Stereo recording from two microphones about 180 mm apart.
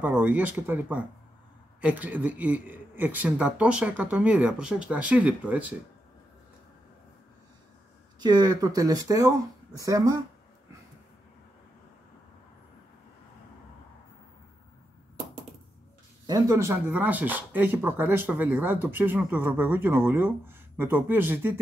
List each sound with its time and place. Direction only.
0.0 s speech: 10° right (ahead or behind)
8.2 s speech: 20° right (ahead or behind)
16.3 s speech: 20° right (ahead or behind)